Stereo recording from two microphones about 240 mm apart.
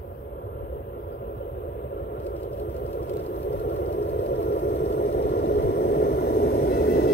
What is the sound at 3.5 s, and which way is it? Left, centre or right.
Vehicle, left.